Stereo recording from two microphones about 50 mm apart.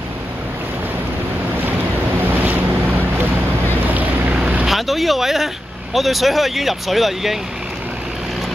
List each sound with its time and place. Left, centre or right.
2.2 s waves: right
3.8 s boat: right
4.6 s a sound: centre
5.9 s speech: centre